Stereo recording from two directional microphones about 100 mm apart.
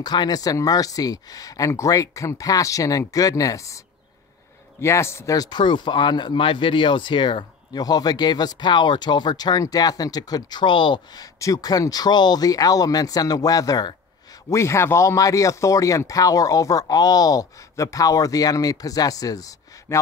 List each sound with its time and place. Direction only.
0.0 s speech: 45° left (ahead or behind)
11.3 s speech: 35° left (ahead or behind)
14.5 s speech: 30° left (ahead or behind)